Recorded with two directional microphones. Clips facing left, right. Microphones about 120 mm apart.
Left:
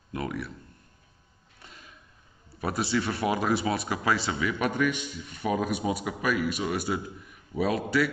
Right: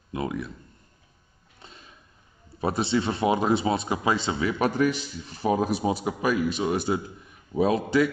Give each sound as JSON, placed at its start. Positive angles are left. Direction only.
{"t": 0.1, "sound": "speech", "side_deg": -20}
{"t": 1.6, "sound": "a sound", "side_deg": -25}
{"t": 2.6, "sound": "speech", "side_deg": -25}